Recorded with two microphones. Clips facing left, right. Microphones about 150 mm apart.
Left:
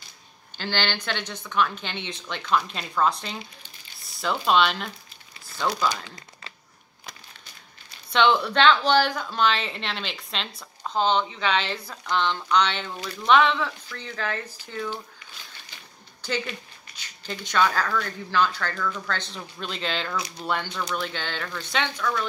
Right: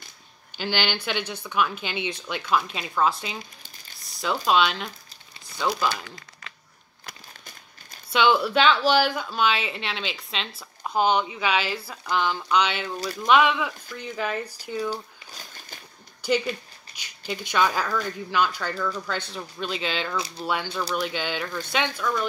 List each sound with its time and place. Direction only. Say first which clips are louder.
0.6 s speech: right 1 dB; 10° right (ahead or behind)
4.0 s a sound: even; centre (ahead or behind)
4.5 s speech: left 1 dB; centre (ahead or behind)
8.1 s speech: even; 5° right (ahead or behind)
14.9 s a sound: right 3 dB; 45° right (ahead or behind)
16.9 s speech: right 3 dB; 10° right (ahead or behind)